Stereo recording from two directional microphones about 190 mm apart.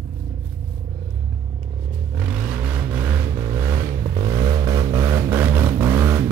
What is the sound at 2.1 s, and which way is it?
Vehicle, 5° right (ahead or behind).